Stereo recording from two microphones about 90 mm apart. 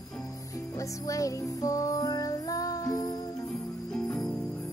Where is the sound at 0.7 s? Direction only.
40° left (ahead or behind).